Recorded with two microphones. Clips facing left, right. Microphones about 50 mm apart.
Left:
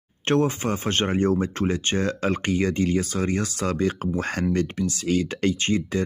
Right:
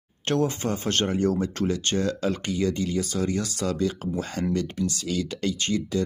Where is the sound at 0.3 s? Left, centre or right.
Left.